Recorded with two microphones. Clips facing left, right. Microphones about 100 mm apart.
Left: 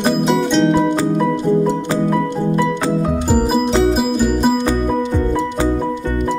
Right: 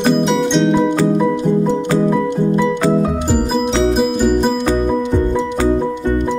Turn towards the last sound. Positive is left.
turn(degrees=0)  # may be behind; listen again after turning